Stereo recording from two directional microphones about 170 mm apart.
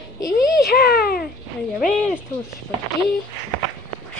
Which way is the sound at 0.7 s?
65° left (ahead or behind).